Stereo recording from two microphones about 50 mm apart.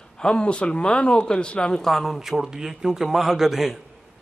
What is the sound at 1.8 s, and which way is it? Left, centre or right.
A man's voice, centre.